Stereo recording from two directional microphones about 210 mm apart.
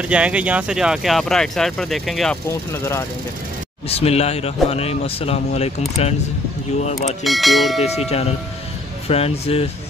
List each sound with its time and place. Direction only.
0.1 s speech: 5° right (ahead or behind)
3.9 s speech: 30° left (ahead or behind)
7.2 s speech: centre (ahead or behind)
7.8 s speech: 30° left (ahead or behind)